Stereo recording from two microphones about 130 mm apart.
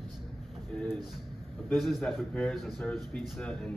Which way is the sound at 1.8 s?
Centre (ahead or behind).